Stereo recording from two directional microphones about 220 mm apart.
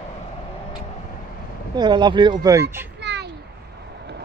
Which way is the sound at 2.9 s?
50° right (ahead or behind).